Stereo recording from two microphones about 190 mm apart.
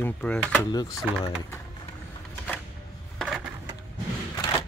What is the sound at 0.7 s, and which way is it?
Speech, 20° left (ahead or behind).